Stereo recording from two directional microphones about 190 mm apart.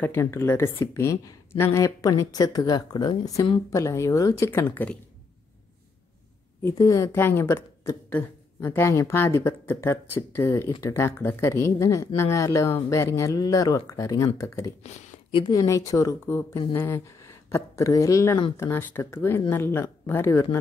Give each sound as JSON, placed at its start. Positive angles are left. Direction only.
{"t": 0.0, "sound": "speech", "side_deg": 10}
{"t": 6.6, "sound": "speech", "side_deg": 20}
{"t": 14.8, "sound": "speech", "side_deg": 35}
{"t": 15.4, "sound": "speech", "side_deg": 20}